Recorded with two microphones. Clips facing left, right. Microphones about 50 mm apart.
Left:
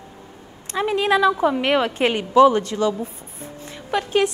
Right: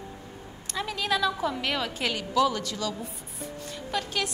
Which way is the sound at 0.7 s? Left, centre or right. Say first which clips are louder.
Left 9 dB; left.